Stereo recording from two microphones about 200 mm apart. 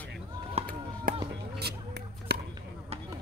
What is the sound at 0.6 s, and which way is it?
Chop, 30° right (ahead or behind).